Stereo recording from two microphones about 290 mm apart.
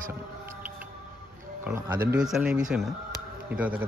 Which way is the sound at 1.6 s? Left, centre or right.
Centre.